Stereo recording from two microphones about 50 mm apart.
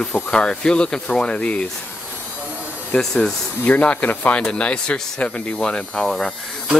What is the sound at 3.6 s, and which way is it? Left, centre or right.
Speech, left.